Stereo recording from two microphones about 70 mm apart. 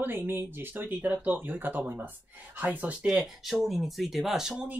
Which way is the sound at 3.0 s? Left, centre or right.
Centre.